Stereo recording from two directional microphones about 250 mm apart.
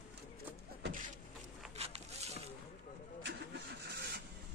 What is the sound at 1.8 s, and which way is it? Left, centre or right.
Zipper, right.